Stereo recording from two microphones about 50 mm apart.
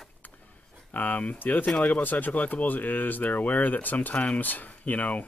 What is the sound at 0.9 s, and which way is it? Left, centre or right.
Speech, left.